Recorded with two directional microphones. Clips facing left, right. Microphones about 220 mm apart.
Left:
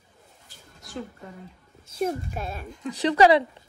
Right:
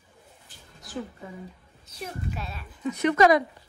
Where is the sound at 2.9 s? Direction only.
30° left (ahead or behind).